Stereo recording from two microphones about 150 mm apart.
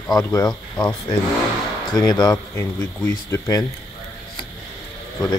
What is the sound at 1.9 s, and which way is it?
Speech, 25° left (ahead or behind).